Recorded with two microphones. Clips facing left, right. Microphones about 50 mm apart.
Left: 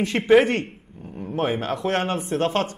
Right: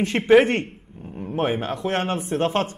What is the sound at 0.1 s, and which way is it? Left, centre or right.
Speech, centre.